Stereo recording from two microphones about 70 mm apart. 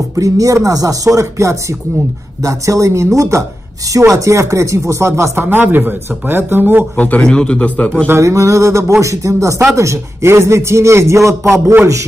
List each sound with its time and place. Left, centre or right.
0.1 s speech: right
7.0 s a man's voice: centre
8.1 s speech: right